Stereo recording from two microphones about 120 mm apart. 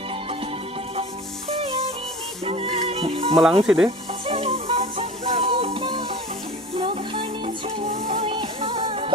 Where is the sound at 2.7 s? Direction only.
55° right (ahead or behind).